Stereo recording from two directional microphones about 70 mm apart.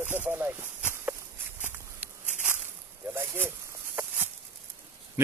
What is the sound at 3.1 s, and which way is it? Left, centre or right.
Speech, right.